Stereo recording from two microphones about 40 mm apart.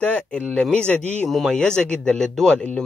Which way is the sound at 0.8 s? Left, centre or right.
Left.